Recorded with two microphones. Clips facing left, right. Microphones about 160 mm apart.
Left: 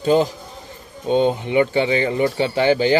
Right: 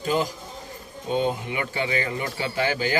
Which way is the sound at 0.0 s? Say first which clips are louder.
Left 8 dB; 25° left (ahead or behind).